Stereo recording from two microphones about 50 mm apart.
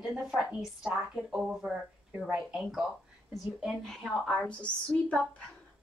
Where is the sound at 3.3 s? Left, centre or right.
Centre.